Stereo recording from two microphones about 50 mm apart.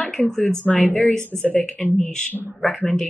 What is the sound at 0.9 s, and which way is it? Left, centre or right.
Speech, left.